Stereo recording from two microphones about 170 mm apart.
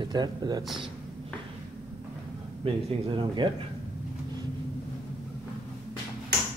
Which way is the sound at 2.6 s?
30° right (ahead or behind).